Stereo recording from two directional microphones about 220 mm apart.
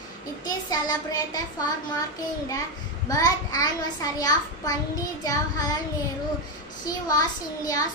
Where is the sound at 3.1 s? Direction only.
15° left (ahead or behind).